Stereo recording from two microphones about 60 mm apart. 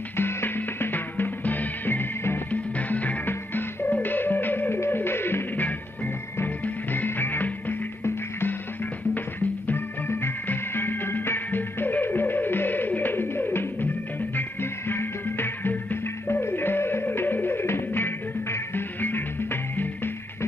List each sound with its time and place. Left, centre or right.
0.2 s music: left
2.5 s music: left
6.6 s music: left
10.0 s music: left